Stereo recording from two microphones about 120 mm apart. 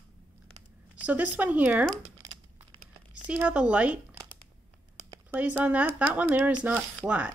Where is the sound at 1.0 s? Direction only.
15° right (ahead or behind).